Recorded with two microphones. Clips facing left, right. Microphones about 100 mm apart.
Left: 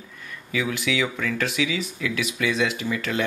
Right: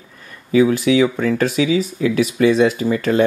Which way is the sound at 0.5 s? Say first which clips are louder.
Right 12 dB; 35° right (ahead or behind).